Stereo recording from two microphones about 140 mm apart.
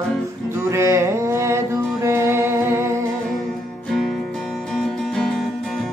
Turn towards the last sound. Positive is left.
turn(degrees=5)  # may be behind; listen again after turning